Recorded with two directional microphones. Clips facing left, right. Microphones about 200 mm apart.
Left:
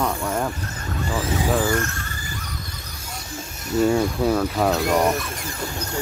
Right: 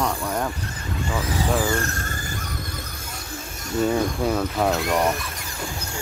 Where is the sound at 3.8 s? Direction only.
10° left (ahead or behind).